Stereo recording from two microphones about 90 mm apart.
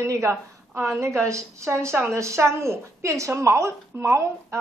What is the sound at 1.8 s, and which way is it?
A woman's voice, 30° right (ahead or behind).